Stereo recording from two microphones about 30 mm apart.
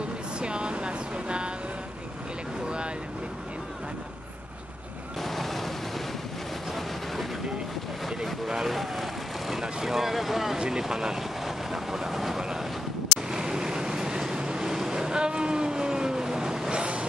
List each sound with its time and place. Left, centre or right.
0.4 s a sound: right
5.2 s boat: centre
8.6 s vehicle: centre
10.8 s speech: centre
11.4 s vehicle: centre
13.3 s vehicle: right
16.7 s a sound: right